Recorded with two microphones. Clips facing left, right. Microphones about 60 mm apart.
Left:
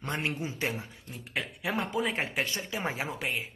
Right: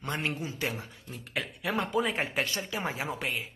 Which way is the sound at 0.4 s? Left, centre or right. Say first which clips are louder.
Left 1 dB; left.